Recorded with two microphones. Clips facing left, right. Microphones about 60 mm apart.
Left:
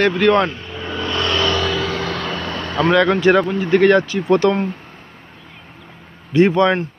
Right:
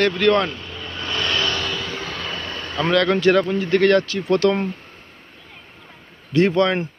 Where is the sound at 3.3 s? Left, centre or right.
Left.